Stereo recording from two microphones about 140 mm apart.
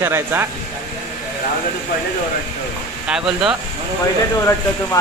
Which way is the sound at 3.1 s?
5° right (ahead or behind).